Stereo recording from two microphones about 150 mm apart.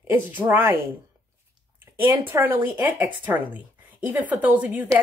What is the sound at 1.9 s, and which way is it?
Speech, 15° right (ahead or behind).